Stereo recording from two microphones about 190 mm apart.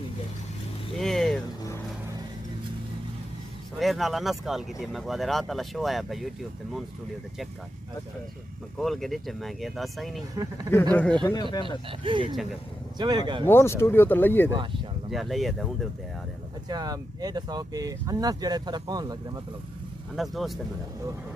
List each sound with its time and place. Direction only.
0.9 s vehicle: centre (ahead or behind)
3.8 s speech: centre (ahead or behind)
8.7 s speech: centre (ahead or behind)
10.3 s speech: 20° right (ahead or behind)
10.7 s speech: 10° left (ahead or behind)
12.0 s speech: 25° right (ahead or behind)
13.5 s speech: 15° left (ahead or behind)
15.0 s speech: centre (ahead or behind)
16.6 s speech: 20° right (ahead or behind)
20.2 s speech: centre (ahead or behind)